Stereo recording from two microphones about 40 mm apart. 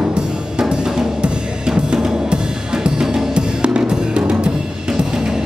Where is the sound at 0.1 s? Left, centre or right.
Centre.